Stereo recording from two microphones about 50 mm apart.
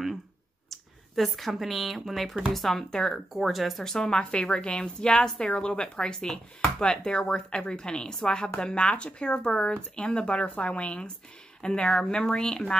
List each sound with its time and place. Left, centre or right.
0.7 s speech: centre
3.9 s a woman's voice: centre